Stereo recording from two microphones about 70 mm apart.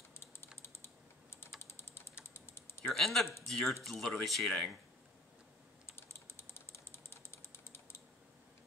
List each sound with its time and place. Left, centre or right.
0.1 s typing: left
1.6 s ratchet: left
2.3 s typing: left
2.9 s speech: centre
5.9 s typing: left